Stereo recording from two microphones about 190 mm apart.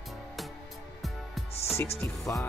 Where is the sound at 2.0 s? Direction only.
15° left (ahead or behind).